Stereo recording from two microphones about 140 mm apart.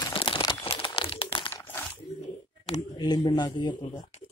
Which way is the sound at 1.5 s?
15° left (ahead or behind).